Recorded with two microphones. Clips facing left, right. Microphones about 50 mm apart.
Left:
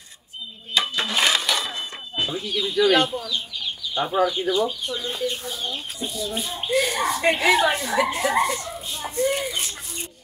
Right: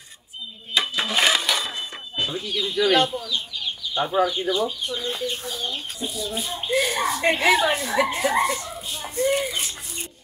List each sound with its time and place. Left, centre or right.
0.7 s a sound: centre
3.9 s speech: centre
8.2 s children playing: centre